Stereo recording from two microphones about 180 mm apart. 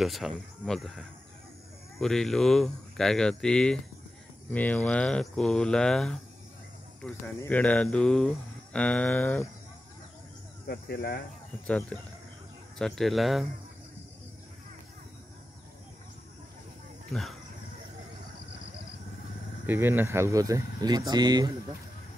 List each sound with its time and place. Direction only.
0.0 s speech: centre (ahead or behind)
7.3 s speech: 10° left (ahead or behind)
10.7 s speech: 60° left (ahead or behind)
11.6 s speech: 5° left (ahead or behind)
17.1 s speech: centre (ahead or behind)
19.6 s speech: 10° right (ahead or behind)